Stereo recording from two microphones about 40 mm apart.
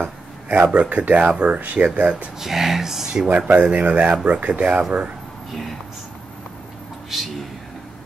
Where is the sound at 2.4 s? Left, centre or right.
Centre.